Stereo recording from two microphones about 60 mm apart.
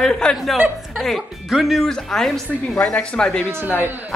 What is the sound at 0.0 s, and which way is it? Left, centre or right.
Speech, centre.